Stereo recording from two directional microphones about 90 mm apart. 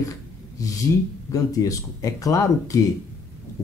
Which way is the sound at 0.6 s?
40° left (ahead or behind).